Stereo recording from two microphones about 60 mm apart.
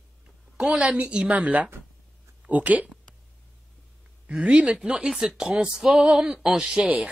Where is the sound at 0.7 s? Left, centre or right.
Centre.